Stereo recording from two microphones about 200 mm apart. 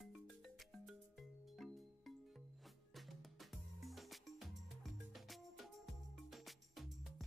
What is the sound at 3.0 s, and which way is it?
Music, centre (ahead or behind).